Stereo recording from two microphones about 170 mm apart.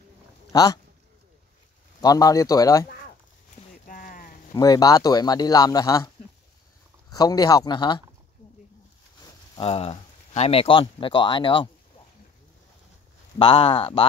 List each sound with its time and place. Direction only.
0.5 s speech: 20° left (ahead or behind)
2.0 s speech: 20° left (ahead or behind)
3.8 s clip-clop: 55° left (ahead or behind)
4.6 s speech: 20° left (ahead or behind)
7.2 s speech: 20° left (ahead or behind)
9.2 s speech: 35° left (ahead or behind)
13.4 s speech: 30° left (ahead or behind)